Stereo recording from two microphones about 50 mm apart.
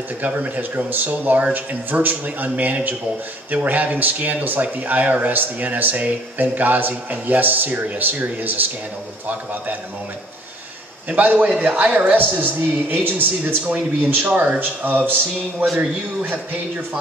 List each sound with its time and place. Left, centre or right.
0.2 s speech: right
11.1 s speech: right
14.2 s speech: right
14.6 s speech: right
15.8 s speech: right